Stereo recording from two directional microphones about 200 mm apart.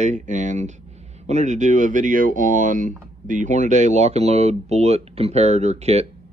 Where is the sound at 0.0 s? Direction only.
40° right (ahead or behind).